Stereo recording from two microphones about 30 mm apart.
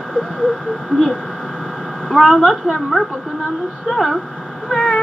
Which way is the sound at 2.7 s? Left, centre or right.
Centre.